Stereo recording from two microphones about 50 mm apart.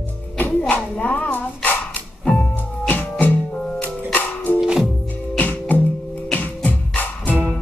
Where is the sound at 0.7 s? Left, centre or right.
Left.